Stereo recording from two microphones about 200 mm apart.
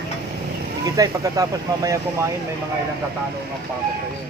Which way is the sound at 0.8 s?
20° right (ahead or behind).